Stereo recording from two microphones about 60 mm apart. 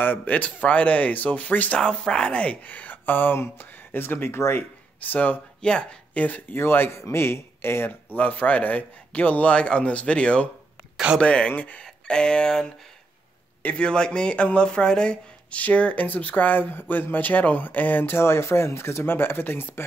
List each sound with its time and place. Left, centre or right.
0.0 s a man's voice: left
1.8 s speech: centre; by 4.6 s left
5.0 s a man's voice: left
5.6 s a man's voice: centre
6.6 s speech: left
8.2 s a man's voice: left
18.1 s speech: left